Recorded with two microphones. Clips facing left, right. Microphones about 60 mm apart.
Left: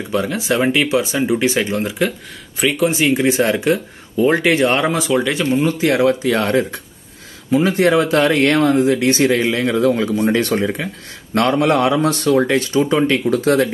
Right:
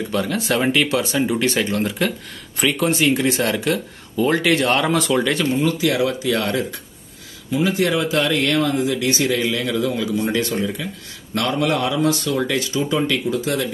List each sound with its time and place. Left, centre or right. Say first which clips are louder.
0.1 s speech: left 4 dB; centre
5.0 s speech: left 2 dB; centre
5.5 s speech: left 3 dB; left
7.5 s speech: left 5 dB; left
13.3 s speech: left 7 dB; left